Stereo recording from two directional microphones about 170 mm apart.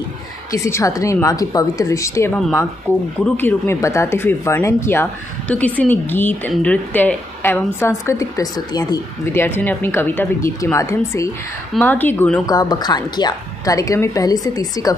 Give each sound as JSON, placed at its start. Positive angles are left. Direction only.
{"t": 0.5, "sound": "a woman's voice", "side_deg": 15}
{"t": 2.9, "sound": "speech", "side_deg": -15}
{"t": 3.3, "sound": "a woman's voice", "side_deg": 15}
{"t": 12.4, "sound": "a woman's voice", "side_deg": 25}